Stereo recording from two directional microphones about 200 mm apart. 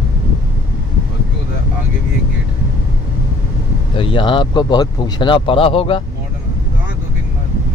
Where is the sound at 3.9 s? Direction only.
25° left (ahead or behind).